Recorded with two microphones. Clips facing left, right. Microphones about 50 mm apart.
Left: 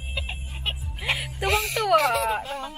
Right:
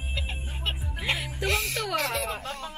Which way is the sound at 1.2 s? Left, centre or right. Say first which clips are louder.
Left 3 dB; centre.